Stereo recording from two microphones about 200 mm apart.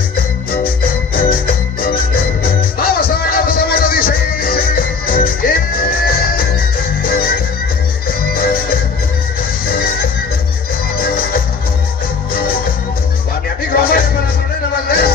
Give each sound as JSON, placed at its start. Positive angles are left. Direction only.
{"t": 0.5, "sound": "music", "side_deg": 45}
{"t": 8.4, "sound": "music", "side_deg": 45}
{"t": 11.0, "sound": "music", "side_deg": 45}
{"t": 13.7, "sound": "music", "side_deg": 45}